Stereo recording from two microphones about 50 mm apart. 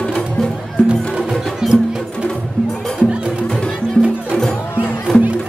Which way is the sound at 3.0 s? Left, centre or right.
Centre.